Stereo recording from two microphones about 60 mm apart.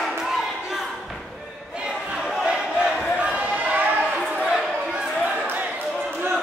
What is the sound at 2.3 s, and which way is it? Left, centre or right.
Crowd, centre.